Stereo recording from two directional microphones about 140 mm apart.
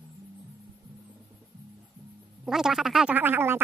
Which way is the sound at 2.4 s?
5° right (ahead or behind).